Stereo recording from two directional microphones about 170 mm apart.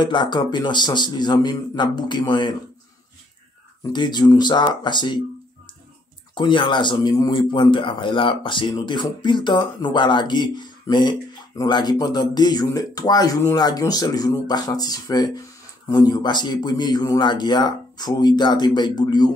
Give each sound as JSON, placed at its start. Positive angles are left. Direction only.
{"t": 0.0, "sound": "a man's voice", "side_deg": 25}
{"t": 3.9, "sound": "a man's voice", "side_deg": 25}
{"t": 6.3, "sound": "a man's voice", "side_deg": 30}